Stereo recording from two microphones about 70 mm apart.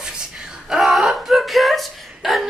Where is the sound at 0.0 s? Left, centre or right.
Centre.